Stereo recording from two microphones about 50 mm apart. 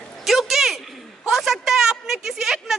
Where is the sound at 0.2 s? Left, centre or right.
Centre.